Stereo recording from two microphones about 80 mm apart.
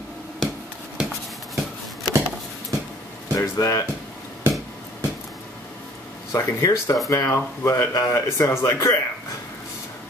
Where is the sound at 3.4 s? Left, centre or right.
Left.